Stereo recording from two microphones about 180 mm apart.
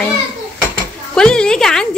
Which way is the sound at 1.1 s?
5° left (ahead or behind).